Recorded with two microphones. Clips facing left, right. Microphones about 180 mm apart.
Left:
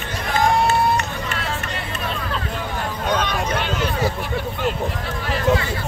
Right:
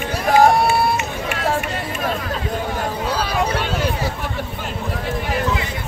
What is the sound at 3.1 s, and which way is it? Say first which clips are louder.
Vehicle: even; 35° right (ahead or behind).